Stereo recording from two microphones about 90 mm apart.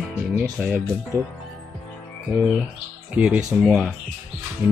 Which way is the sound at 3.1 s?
15° right (ahead or behind).